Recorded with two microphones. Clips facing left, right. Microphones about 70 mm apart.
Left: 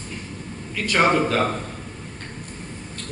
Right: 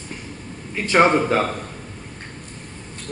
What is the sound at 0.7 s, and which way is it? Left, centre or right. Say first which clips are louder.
Speech: right 3 dB; right.